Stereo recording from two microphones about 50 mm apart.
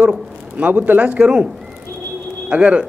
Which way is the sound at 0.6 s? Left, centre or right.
Right.